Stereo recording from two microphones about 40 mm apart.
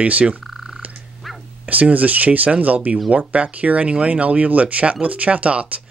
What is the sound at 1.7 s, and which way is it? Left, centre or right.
Speech, right.